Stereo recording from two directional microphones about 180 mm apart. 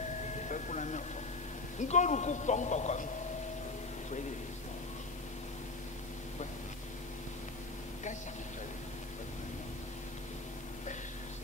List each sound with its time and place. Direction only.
0.5 s vehicle: 40° left (ahead or behind)
1.8 s speech: 40° left (ahead or behind)